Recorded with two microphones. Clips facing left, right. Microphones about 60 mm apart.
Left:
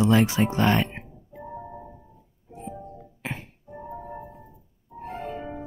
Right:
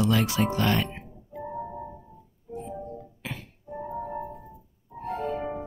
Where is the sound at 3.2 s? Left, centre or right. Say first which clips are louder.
Left 7 dB; left.